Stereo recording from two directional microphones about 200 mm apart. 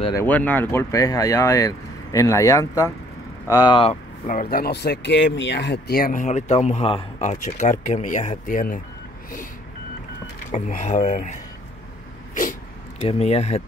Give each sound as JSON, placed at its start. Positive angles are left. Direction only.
{"t": 0.0, "sound": "speech", "side_deg": 15}
{"t": 4.3, "sound": "speech", "side_deg": 45}
{"t": 10.5, "sound": "speech", "side_deg": 40}
{"t": 13.0, "sound": "speech", "side_deg": 30}